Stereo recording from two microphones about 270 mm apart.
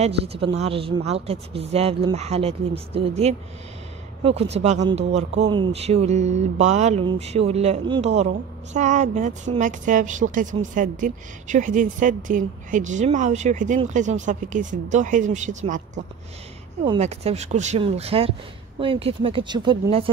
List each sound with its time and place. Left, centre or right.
0.0 s speech: right